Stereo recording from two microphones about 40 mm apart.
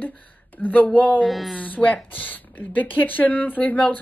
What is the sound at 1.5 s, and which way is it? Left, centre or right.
Speech, left.